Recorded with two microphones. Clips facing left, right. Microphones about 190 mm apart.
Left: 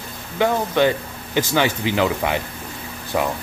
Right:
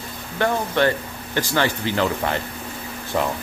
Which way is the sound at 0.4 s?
15° left (ahead or behind).